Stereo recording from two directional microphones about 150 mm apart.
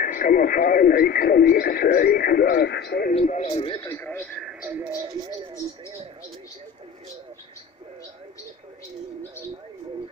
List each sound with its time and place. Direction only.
0.0 s speech: 65° left (ahead or behind); by 3.2 s 90° left
3.2 s speech: 50° left (ahead or behind)
3.5 s a man's voice: 35° left (ahead or behind)
3.9 s speech: 15° left (ahead or behind)
4.2 s speech: centre (ahead or behind)